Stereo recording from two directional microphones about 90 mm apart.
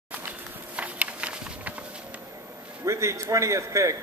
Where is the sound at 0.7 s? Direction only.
15° right (ahead or behind).